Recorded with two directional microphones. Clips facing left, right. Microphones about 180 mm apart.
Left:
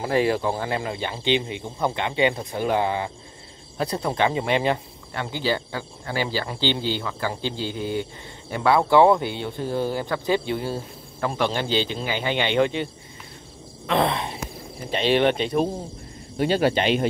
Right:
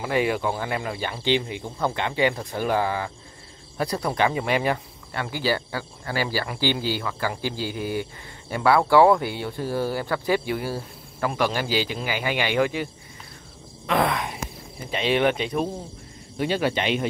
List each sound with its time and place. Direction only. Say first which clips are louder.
0.0 s speech: left 2 dB; 35° left (ahead or behind)
13.9 s speech: left 1 dB; 25° left (ahead or behind)